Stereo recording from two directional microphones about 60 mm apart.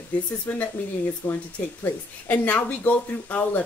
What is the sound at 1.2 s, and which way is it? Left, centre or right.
Speech, left.